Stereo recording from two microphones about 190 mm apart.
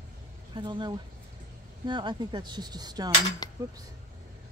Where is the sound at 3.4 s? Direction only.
20° left (ahead or behind).